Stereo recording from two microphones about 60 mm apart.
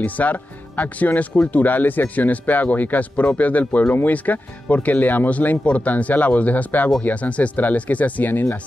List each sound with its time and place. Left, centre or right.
0.0 s speech: left